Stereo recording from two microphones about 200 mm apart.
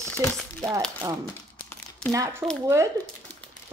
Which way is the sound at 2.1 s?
15° right (ahead or behind).